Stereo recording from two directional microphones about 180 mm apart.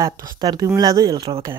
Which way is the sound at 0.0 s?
20° right (ahead or behind).